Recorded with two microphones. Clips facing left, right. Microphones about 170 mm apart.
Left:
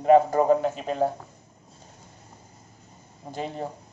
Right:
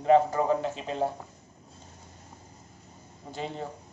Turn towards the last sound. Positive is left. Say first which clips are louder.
# left 3 dB
turn(degrees=50)  # may be behind; listen again after turning